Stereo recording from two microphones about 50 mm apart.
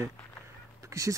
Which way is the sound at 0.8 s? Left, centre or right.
Right.